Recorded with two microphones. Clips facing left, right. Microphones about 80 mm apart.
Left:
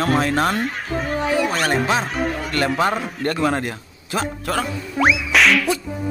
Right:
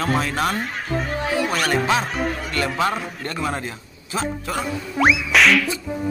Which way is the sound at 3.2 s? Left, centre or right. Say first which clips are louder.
Left 7 dB; left.